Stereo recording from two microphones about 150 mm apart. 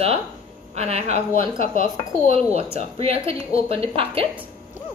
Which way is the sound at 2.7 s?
40° right (ahead or behind).